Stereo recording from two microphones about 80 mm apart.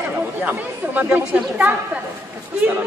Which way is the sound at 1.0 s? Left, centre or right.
Centre.